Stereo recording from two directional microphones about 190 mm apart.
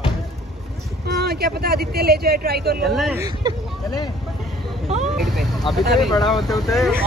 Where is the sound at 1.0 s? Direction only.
55° right (ahead or behind).